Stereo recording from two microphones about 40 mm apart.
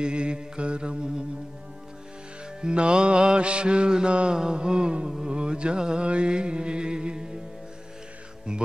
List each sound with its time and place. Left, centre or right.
0.0 s mantra: right
2.6 s mantra: right
6.0 s music: right